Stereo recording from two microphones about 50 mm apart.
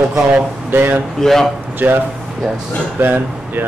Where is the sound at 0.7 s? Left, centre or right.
Right.